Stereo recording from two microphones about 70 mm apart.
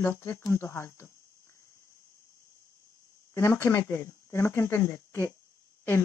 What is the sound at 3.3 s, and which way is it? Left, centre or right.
Speech, left.